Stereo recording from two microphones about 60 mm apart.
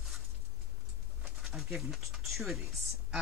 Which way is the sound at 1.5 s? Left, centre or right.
Centre.